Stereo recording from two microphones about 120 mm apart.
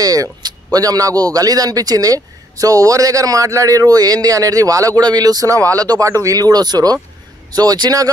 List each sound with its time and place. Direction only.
0.0 s a man's voice: 30° right (ahead or behind)